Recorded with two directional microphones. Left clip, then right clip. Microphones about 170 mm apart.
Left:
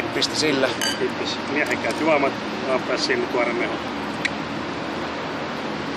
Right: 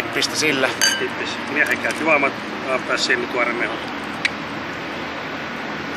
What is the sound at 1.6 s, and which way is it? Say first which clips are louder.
Speech: right 4 dB; 15° left (ahead or behind).